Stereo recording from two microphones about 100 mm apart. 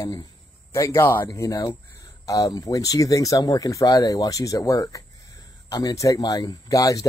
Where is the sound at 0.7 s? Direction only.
30° left (ahead or behind).